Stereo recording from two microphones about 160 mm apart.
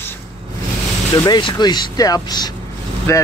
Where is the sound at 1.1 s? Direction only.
25° left (ahead or behind).